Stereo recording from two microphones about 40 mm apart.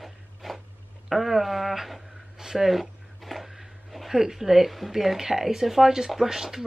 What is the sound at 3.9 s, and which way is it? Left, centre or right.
Speech, centre.